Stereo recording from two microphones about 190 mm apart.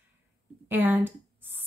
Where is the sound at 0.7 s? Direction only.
10° right (ahead or behind).